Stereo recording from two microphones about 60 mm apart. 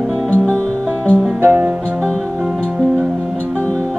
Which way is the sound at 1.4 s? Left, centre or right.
Right.